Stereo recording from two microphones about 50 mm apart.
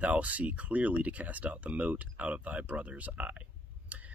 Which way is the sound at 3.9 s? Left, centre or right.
Right.